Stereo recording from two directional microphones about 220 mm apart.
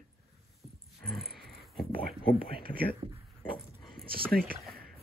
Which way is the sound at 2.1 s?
45° right (ahead or behind).